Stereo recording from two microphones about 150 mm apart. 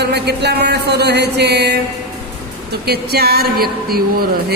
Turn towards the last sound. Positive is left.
turn(degrees=-85)